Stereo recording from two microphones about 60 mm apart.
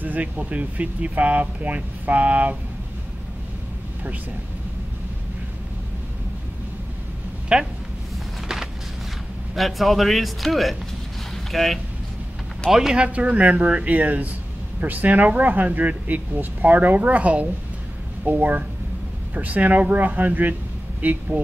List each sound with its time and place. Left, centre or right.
0.0 s speech: right
7.5 s speech: centre
9.6 s speech: centre
13.0 s speech: right